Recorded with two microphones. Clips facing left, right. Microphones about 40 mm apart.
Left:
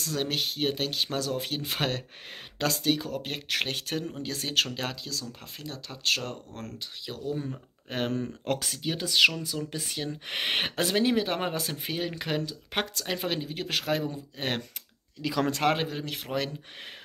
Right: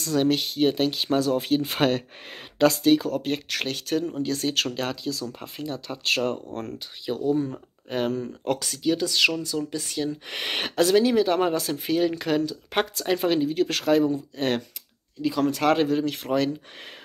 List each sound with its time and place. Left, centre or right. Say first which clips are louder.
0.0 s speech: right 7 dB; centre
3.4 s speech: right 2 dB; centre
5.1 s speech: right 5 dB; centre
7.9 s speech: right 4 dB; left; by 12.5 s centre
12.7 s speech: right 6 dB; centre
15.6 s speech: right 6 dB; centre